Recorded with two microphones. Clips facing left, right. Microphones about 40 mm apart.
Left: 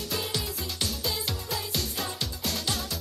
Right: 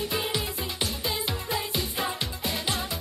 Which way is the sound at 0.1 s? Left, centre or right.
Right.